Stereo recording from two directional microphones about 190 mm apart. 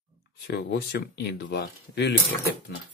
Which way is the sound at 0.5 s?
60° left (ahead or behind).